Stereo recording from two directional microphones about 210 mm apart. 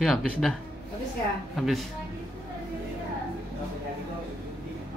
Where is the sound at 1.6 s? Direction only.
Centre (ahead or behind).